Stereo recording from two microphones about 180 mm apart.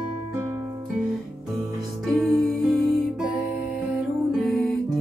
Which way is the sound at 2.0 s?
Centre (ahead or behind).